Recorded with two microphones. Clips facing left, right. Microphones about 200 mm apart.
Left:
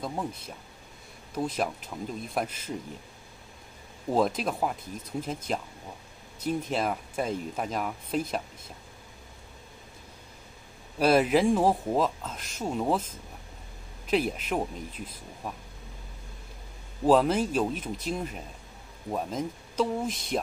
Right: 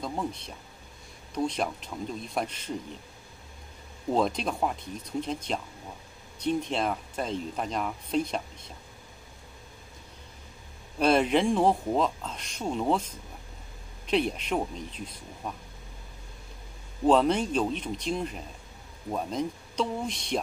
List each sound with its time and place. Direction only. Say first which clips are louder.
0.0 s speech: right 1 dB; 5° left (ahead or behind)
4.1 s speech: left 1 dB; 5° left (ahead or behind)
11.0 s speech: left 1 dB; 5° left (ahead or behind)
14.0 s speech: even; 5° left (ahead or behind)
17.0 s speech: even; 5° left (ahead or behind)